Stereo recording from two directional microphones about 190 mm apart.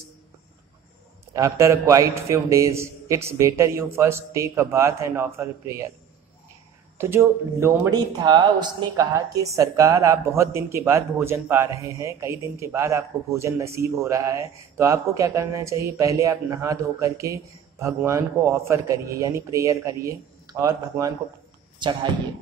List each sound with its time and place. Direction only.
1.3 s speech: 15° right (ahead or behind)
7.0 s speech: 15° right (ahead or behind)